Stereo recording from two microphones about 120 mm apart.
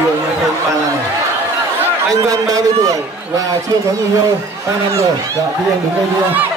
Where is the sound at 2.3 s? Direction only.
30° right (ahead or behind).